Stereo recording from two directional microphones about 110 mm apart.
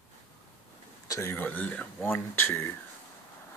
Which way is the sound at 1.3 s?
15° left (ahead or behind).